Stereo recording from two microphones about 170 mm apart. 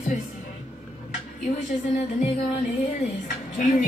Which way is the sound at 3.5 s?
45° left (ahead or behind).